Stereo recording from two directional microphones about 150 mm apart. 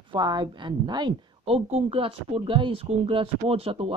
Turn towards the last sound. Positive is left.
turn(degrees=-40)  # may be behind; listen again after turning